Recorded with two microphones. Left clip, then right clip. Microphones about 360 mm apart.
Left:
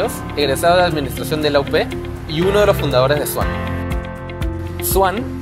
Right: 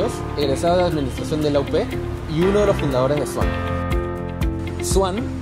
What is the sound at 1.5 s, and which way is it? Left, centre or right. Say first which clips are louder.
Speech: left 5 dB; left.